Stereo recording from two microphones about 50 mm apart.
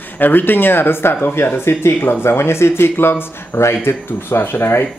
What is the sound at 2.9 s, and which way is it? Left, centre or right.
Speech, left.